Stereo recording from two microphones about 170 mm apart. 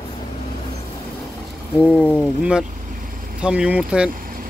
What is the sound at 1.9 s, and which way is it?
Speech, 5° left (ahead or behind).